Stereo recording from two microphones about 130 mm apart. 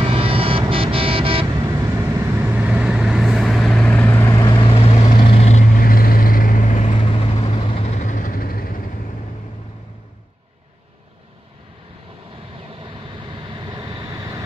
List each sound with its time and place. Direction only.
0.0 s vehicle: 45° right (ahead or behind)
2.4 s vehicle: 10° right (ahead or behind); by 4.4 s 20° left (ahead or behind)
4.4 s vehicle: 40° left (ahead or behind); by 8.8 s 90° left
13.3 s vehicle: 35° right (ahead or behind)